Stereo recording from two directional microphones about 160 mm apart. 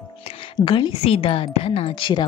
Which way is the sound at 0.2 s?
35° left (ahead or behind).